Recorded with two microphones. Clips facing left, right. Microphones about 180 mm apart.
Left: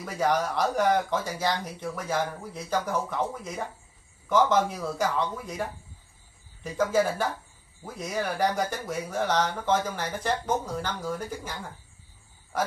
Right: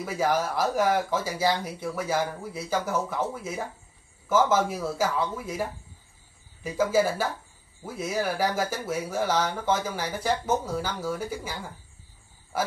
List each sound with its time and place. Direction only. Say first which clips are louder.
0.0 s speech: even; 5° right (ahead or behind)
12.5 s speech: even; 5° right (ahead or behind)